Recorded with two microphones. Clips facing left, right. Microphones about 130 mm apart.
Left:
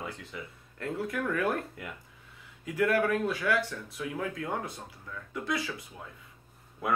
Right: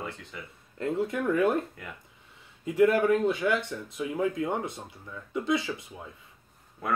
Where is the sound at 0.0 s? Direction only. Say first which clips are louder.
Right 1 dB; centre (ahead or behind).